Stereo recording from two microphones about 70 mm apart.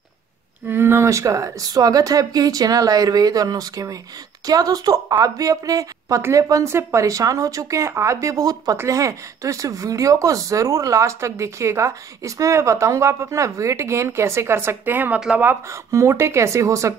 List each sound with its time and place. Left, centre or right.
0.7 s speech: right
15.7 s speech: right